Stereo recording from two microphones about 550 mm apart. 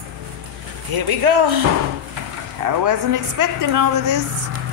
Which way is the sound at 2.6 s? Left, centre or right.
Right.